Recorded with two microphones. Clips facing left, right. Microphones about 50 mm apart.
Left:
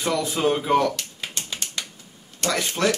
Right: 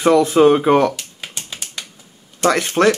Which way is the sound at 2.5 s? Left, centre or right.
Right.